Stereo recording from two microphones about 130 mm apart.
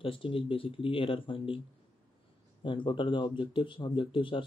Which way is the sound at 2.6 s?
40° left (ahead or behind).